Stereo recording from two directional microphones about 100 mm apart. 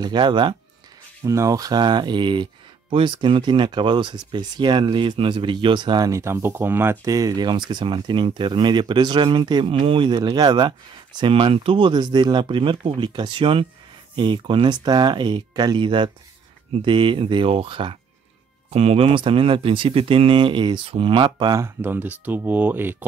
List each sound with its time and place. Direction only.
0.0 s speech: 50° right (ahead or behind)
1.2 s speech: 35° right (ahead or behind); by 6.0 s 50° right (ahead or behind)
6.0 s speech: 30° right (ahead or behind)
7.1 s speech: 35° right (ahead or behind)
11.1 s speech: 60° right (ahead or behind)
11.9 s speech: 50° right (ahead or behind)
18.7 s speech: 90° right; by 21.5 s 50° right (ahead or behind)
21.5 s speech: 25° right (ahead or behind)